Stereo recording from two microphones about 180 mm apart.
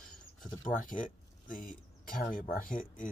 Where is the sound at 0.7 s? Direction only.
50° left (ahead or behind).